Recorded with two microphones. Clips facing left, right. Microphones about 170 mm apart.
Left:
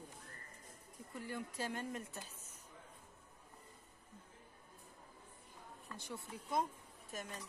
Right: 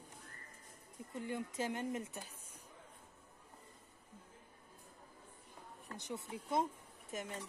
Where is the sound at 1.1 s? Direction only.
20° right (ahead or behind).